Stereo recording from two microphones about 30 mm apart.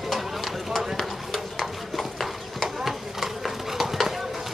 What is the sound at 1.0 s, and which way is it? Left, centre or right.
Horse, centre.